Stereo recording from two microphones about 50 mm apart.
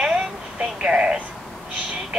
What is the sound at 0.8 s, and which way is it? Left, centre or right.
Speech, right.